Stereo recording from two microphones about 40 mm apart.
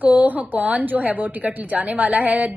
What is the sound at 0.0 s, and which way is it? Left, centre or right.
A woman's voice, right.